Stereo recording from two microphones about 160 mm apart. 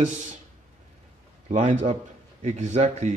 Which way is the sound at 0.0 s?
50° right (ahead or behind).